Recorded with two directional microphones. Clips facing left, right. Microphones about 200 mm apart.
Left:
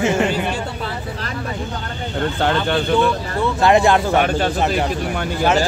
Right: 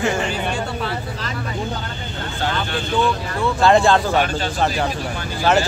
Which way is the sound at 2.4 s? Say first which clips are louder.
Left 4 dB; 60° left (ahead or behind).